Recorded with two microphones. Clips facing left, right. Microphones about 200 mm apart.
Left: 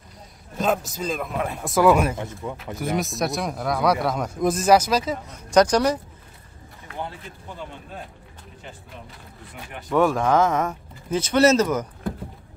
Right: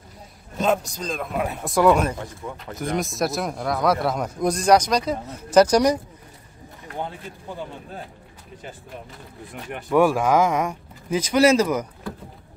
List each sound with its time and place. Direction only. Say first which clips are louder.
0.6 s speech: right 1 dB; centre (ahead or behind)
2.1 s speech: left 2 dB; 20° left (ahead or behind)
2.5 s speech: even; 5° left (ahead or behind); by 5.9 s 10° right (ahead or behind)
9.8 s speech: right 2 dB; 10° right (ahead or behind)